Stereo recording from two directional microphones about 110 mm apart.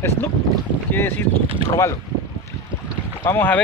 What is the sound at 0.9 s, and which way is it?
Speech, 20° left (ahead or behind).